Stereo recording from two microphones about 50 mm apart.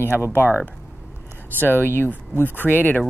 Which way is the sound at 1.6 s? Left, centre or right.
Left.